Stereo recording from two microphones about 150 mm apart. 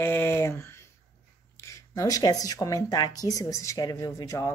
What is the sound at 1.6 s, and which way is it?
Speech, 20° left (ahead or behind).